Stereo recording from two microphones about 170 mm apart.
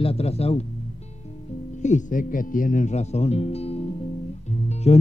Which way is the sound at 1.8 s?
45° left (ahead or behind).